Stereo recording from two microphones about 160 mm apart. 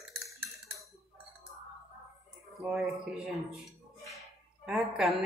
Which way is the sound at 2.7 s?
Centre (ahead or behind).